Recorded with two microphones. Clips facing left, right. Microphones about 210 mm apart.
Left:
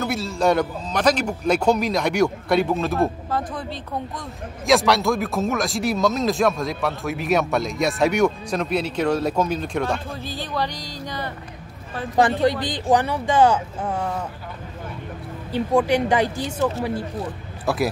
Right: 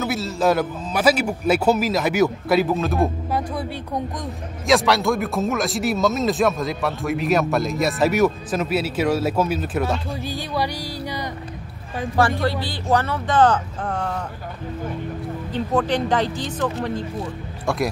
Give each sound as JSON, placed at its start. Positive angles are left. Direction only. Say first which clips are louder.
{"t": 0.0, "sound": "speech", "louder": "even", "side_deg": 0}
{"t": 3.3, "sound": "speech", "louder": "right 2 dB", "side_deg": -10}
{"t": 4.6, "sound": "speech", "louder": "even", "side_deg": 0}
{"t": 12.2, "sound": "a woman's voice", "louder": "left 2 dB", "side_deg": 20}
{"t": 15.5, "sound": "speech", "louder": "left 3 dB", "side_deg": 10}